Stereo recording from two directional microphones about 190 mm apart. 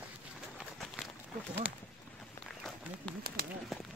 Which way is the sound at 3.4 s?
55° right (ahead or behind).